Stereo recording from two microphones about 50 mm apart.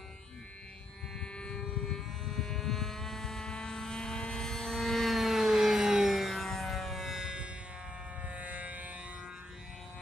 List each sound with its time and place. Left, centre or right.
1.2 s vehicle: centre
6.4 s music: centre
7.2 s music: centre
8.3 s a sound: right